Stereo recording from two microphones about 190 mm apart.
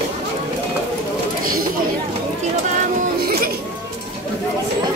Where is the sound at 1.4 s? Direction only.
50° right (ahead or behind).